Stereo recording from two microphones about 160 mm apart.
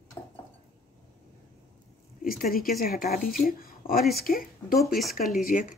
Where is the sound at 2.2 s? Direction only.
65° left (ahead or behind).